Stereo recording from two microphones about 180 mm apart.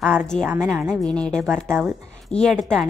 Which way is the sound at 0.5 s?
5° right (ahead or behind).